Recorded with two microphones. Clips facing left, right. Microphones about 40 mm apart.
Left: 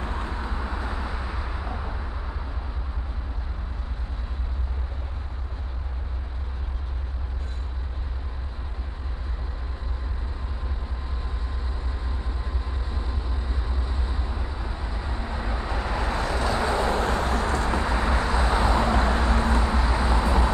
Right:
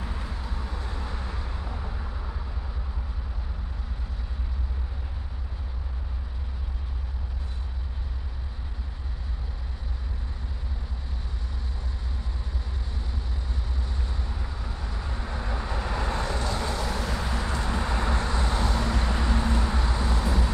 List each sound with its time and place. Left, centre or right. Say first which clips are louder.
0.0 s vehicle: left 5 dB; left
0.4 s vehicle: left 6 dB; left
12.9 s vehicle: left 4 dB; centre
16.7 s vehicle: left 7 dB; left
17.0 s vehicle: left 6 dB; left
17.8 s vehicle: left 4 dB; centre; by 19.6 s left
19.6 s a sound: left 4 dB; centre